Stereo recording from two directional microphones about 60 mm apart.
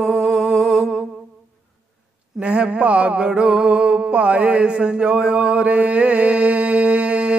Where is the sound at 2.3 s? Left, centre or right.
Centre.